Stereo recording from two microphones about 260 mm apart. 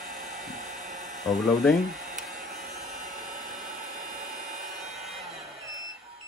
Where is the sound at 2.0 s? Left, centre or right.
Right.